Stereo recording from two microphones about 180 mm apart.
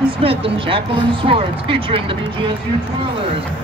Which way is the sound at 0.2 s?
30° right (ahead or behind).